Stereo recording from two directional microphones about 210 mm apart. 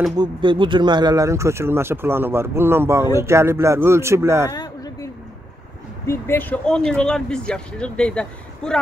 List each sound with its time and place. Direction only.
0.1 s speech: 20° right (ahead or behind)
4.5 s a sound: 20° left (ahead or behind)
6.0 s speech: 10° left (ahead or behind)